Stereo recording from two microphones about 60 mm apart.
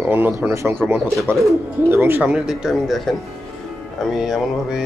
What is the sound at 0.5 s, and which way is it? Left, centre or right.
Speech, right.